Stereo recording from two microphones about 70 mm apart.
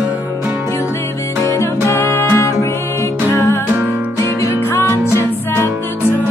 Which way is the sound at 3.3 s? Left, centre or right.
Left.